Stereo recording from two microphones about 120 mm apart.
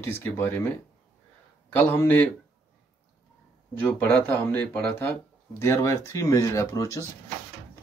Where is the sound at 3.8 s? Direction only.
15° left (ahead or behind).